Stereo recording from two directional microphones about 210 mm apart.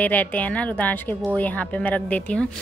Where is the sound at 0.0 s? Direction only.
10° left (ahead or behind).